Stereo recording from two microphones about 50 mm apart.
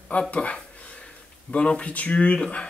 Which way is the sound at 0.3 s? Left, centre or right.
Left.